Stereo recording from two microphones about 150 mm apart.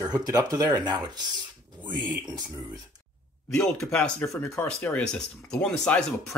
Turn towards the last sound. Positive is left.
turn(degrees=5)  # may be behind; listen again after turning